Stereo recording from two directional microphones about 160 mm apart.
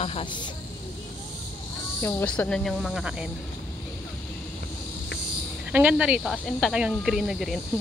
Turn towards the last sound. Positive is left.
turn(degrees=0)  # may be behind; listen again after turning